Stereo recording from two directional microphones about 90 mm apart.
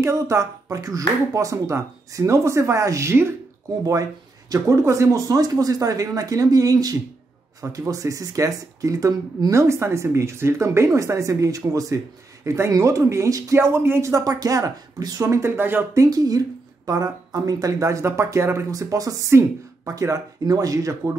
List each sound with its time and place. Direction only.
0.0 s speech: 35° right (ahead or behind)
4.5 s speech: 35° right (ahead or behind)
14.1 s speech: 40° right (ahead or behind); by 15.8 s 25° right (ahead or behind)
15.9 s speech: 40° right (ahead or behind)